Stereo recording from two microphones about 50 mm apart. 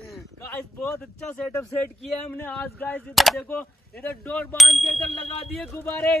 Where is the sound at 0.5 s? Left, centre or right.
Left.